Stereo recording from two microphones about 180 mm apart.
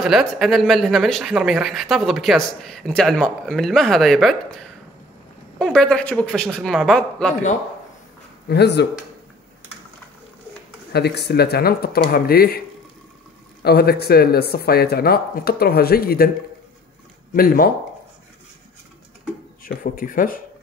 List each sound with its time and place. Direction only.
0.0 s speech: centre (ahead or behind)
8.5 s speech: 65° left (ahead or behind)
10.9 s speech: 65° left (ahead or behind)
17.3 s speech: 55° left (ahead or behind)
19.6 s speech: 50° left (ahead or behind)